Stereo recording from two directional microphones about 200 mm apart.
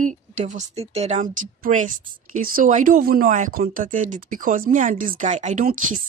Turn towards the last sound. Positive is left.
turn(degrees=-40)  # may be behind; listen again after turning